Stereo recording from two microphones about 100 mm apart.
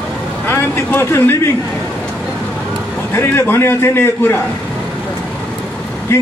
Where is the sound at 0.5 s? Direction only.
20° left (ahead or behind).